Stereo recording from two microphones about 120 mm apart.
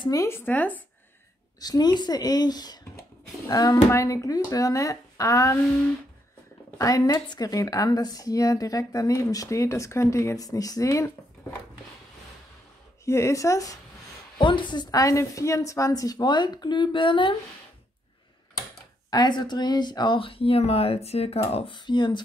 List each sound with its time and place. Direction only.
0.0 s speech: 30° left (ahead or behind)
0.5 s speech: 15° left (ahead or behind)
1.6 s a woman's voice: 35° left (ahead or behind)
6.8 s speech: 30° left (ahead or behind)
13.0 s speech: 25° left (ahead or behind)
14.4 s a woman's voice: 40° left (ahead or behind)
19.0 s speech: 35° left (ahead or behind); by 21.7 s 55° left (ahead or behind)
21.7 s a woman's voice: 40° left (ahead or behind)